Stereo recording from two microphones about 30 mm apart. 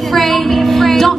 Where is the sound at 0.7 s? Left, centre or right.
Centre.